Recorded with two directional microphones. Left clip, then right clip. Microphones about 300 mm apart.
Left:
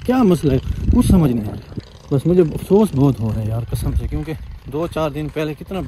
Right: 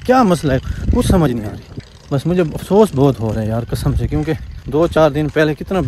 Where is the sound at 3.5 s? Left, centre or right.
Right.